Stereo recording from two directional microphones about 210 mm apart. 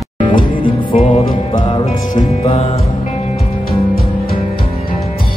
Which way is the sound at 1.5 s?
20° left (ahead or behind).